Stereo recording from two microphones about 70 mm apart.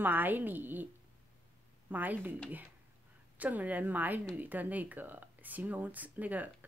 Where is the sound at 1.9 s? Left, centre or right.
Right.